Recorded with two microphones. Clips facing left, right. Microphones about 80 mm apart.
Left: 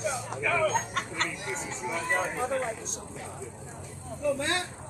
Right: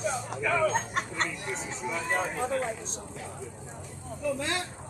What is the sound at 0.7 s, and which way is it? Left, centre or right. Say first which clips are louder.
Speech: even; right.